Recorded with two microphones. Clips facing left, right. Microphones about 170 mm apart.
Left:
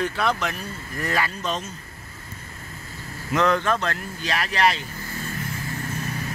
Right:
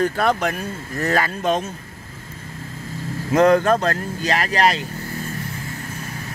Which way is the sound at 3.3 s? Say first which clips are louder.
Right 7 dB; 45° right (ahead or behind).